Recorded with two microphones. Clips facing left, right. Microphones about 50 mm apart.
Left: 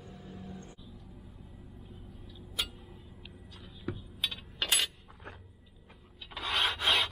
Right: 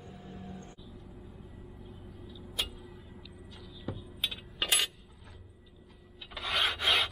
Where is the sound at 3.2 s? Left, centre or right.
Left.